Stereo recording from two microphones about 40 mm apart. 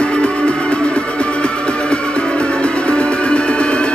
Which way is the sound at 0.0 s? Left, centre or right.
Left.